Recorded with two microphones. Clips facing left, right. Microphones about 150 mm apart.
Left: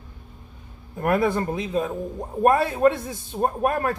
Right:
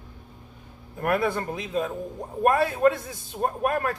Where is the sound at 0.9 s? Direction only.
25° left (ahead or behind).